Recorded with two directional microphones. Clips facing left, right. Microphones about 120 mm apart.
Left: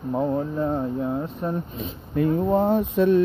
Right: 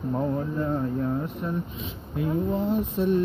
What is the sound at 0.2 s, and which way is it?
Speech, 20° left (ahead or behind).